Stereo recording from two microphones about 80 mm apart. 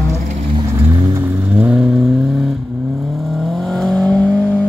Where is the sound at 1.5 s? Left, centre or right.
Centre.